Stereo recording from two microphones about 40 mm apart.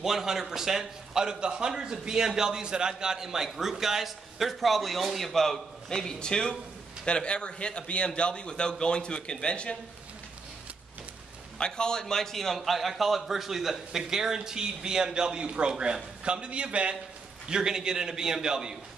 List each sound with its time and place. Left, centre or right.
0.0 s a man's voice: centre; by 9.8 s left
11.5 s a man's voice: left; by 16.9 s right
17.5 s a man's voice: centre